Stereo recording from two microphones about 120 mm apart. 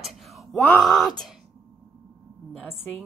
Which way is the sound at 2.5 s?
10° left (ahead or behind).